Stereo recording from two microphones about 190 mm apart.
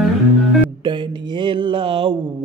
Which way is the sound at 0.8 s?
25° right (ahead or behind).